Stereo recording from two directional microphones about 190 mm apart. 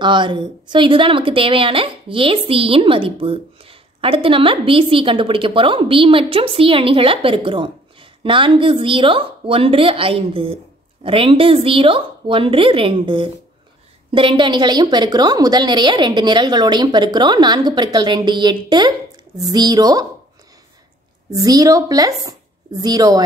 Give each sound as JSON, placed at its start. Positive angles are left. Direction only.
{"t": 0.0, "sound": "a woman's voice", "side_deg": -25}
{"t": 21.3, "sound": "a woman's voice", "side_deg": -20}